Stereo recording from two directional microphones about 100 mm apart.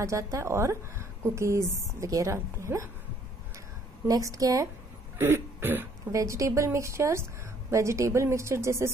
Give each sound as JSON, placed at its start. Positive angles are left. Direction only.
{"t": 0.0, "sound": "a woman's voice", "side_deg": -30}
{"t": 4.1, "sound": "a woman's voice", "side_deg": -35}
{"t": 5.2, "sound": "a woman's voice", "side_deg": -20}
{"t": 6.1, "sound": "a woman's voice", "side_deg": -30}